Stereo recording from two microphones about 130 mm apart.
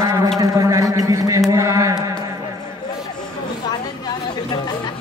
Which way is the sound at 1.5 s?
25° right (ahead or behind).